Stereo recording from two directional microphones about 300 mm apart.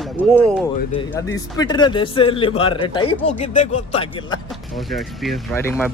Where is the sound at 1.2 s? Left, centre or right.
Centre.